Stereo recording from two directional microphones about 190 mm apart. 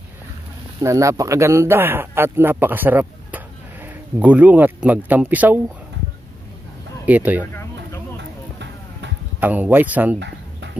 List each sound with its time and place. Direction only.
0.7 s speech: 15° right (ahead or behind)
7.1 s speech: 10° right (ahead or behind)
8.2 s a sound: 65° right (ahead or behind)
9.4 s speech: 10° right (ahead or behind)
10.1 s chicken: 65° right (ahead or behind)